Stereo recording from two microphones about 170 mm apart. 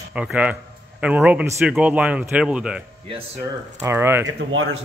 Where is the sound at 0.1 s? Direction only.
5° right (ahead or behind).